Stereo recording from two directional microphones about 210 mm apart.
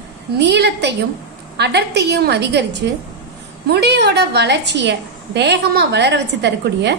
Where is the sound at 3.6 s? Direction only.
50° right (ahead or behind).